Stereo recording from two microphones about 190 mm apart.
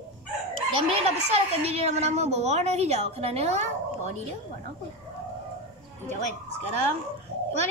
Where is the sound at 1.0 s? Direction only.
35° right (ahead or behind).